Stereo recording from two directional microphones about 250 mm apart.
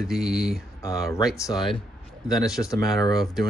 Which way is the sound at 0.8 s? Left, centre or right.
Centre.